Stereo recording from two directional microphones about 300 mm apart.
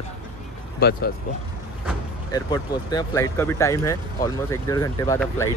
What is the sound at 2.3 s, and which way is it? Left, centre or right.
Speech, centre.